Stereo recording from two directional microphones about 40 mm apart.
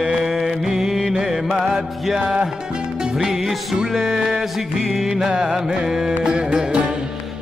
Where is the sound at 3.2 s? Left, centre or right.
Centre.